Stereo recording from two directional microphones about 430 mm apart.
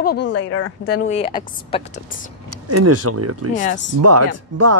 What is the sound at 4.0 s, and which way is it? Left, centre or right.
Speech, right.